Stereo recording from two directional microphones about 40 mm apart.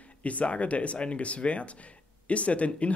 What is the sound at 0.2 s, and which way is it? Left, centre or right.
Speech, left.